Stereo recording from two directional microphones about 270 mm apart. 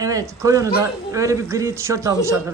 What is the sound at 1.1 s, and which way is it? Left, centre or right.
A man's voice, centre.